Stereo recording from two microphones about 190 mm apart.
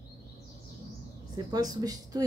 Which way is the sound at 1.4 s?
20° right (ahead or behind).